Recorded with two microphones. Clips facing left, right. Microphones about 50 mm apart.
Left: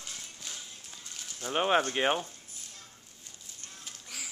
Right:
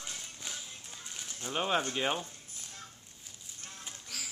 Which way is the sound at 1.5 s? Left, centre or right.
Left.